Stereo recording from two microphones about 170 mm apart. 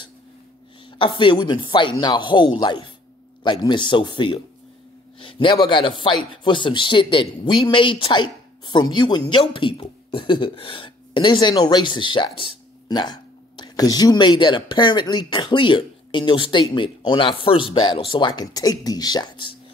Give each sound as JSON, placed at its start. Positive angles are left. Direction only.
{"t": 0.9, "sound": "speech", "side_deg": 30}